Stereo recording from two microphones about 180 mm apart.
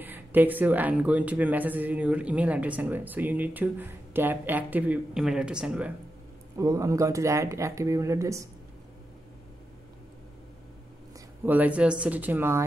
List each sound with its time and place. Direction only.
0.0 s speech: 10° right (ahead or behind)
6.5 s speech: 20° right (ahead or behind)
11.1 s speech: 10° right (ahead or behind)